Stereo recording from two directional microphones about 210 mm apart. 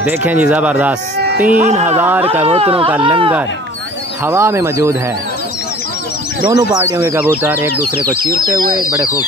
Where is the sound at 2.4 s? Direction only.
25° right (ahead or behind).